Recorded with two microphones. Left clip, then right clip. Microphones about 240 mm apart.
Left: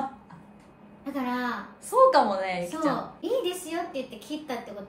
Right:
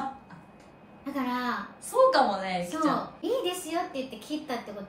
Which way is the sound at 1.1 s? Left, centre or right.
Centre.